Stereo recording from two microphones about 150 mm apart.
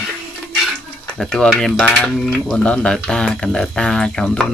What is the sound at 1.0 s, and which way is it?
Speech, 5° left (ahead or behind).